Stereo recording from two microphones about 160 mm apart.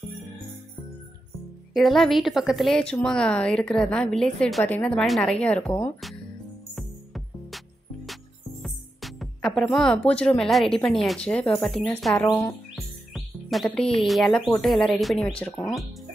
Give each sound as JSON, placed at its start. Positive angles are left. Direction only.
{"t": 1.7, "sound": "a woman's voice", "side_deg": 0}
{"t": 6.7, "sound": "music", "side_deg": 0}
{"t": 10.0, "sound": "a woman's voice", "side_deg": 5}
{"t": 12.3, "sound": "speech", "side_deg": 20}
{"t": 12.7, "sound": "chirp", "side_deg": 0}
{"t": 14.0, "sound": "a woman's voice", "side_deg": 0}